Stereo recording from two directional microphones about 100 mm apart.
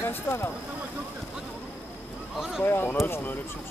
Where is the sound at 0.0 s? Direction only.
25° left (ahead or behind).